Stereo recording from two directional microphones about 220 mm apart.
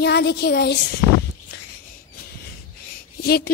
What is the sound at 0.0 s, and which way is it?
Speech, 50° left (ahead or behind).